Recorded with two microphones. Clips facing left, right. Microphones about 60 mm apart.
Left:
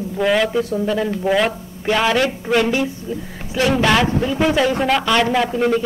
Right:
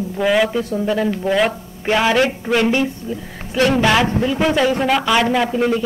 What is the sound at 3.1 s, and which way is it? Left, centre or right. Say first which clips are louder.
Speech: even; right.